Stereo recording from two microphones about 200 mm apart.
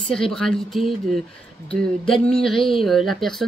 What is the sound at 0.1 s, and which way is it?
Speech, 5° left (ahead or behind).